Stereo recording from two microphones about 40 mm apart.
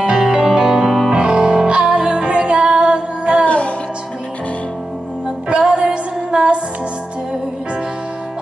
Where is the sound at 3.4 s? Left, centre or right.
Left.